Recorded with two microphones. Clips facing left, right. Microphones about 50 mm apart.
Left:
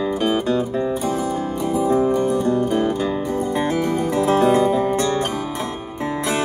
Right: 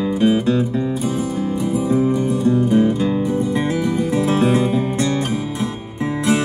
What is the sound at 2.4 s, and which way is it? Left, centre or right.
Music, left.